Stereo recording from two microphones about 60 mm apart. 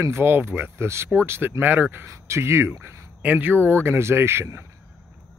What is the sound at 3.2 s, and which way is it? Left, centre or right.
Speech, right.